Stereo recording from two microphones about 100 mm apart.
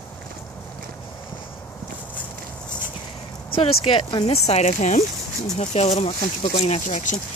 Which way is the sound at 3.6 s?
70° left (ahead or behind).